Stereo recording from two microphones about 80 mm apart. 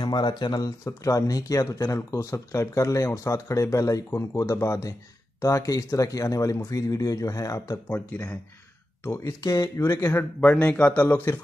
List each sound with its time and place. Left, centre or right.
0.0 s speech: left
7.9 s speech: centre
9.6 s speech: left
9.9 s speech: left
10.4 s a man's voice: centre